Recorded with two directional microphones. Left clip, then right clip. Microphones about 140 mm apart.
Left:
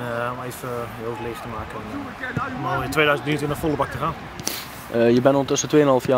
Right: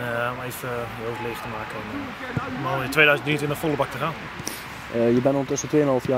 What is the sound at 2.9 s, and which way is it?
Speech, centre (ahead or behind).